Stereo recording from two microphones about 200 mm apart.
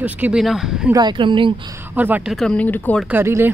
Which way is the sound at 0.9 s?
25° right (ahead or behind).